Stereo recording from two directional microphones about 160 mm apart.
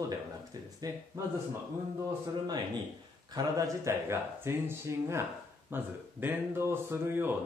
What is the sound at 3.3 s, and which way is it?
Speech, 20° right (ahead or behind).